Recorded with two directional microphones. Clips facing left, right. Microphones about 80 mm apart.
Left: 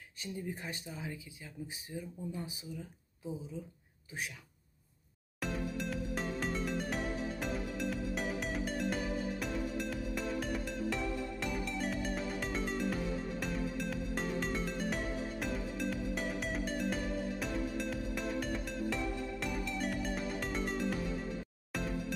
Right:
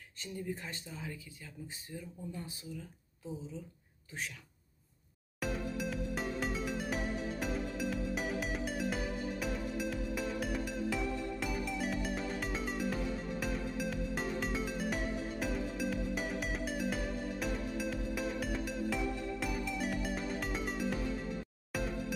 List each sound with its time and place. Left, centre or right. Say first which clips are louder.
0.2 s speech: even; centre
5.4 s music: right 1 dB; centre